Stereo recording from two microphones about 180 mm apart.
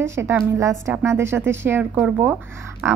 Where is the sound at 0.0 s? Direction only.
15° right (ahead or behind).